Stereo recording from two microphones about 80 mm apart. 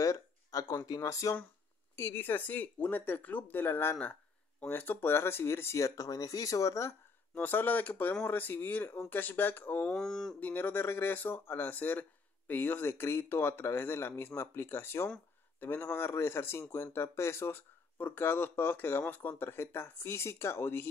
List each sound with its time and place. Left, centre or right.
0.0 s a sound: left
0.8 s speech: left
2.0 s speech: left
7.3 s speech: left
9.9 s speech: centre
10.4 s speech: left